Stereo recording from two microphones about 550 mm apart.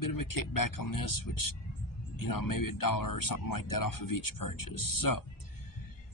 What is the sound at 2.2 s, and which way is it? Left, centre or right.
Speech, left.